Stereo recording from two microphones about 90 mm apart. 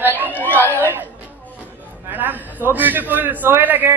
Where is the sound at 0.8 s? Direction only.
20° right (ahead or behind).